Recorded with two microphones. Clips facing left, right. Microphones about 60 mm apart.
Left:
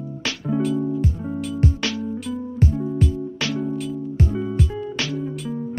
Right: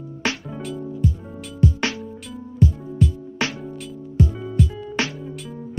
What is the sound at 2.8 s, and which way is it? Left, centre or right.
Music, centre.